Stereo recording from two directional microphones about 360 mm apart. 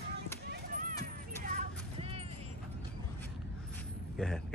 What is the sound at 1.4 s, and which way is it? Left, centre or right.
Vehicle, centre.